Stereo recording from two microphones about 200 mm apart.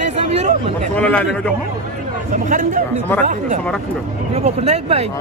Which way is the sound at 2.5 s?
40° right (ahead or behind).